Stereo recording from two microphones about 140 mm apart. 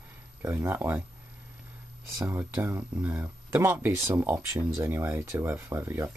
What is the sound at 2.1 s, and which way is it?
Speech, 20° right (ahead or behind).